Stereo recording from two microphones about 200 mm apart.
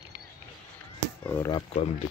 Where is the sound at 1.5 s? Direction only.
30° left (ahead or behind).